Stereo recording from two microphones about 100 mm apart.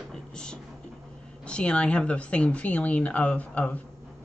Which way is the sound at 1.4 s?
10° left (ahead or behind).